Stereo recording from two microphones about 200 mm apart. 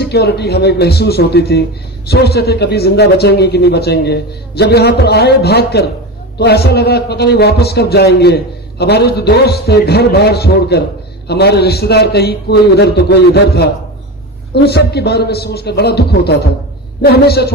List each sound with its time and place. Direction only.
0.0 s a man's voice: 55° left (ahead or behind)